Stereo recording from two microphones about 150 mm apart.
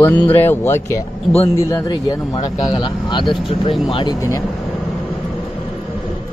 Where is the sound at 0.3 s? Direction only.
15° left (ahead or behind).